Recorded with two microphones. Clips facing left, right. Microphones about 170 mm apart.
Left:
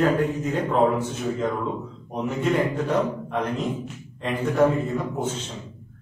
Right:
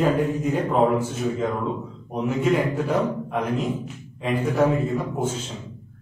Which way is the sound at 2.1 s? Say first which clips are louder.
Right 3 dB; 5° right (ahead or behind).